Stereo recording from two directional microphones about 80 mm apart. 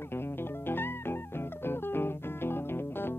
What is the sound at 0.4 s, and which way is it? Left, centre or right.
Music, left.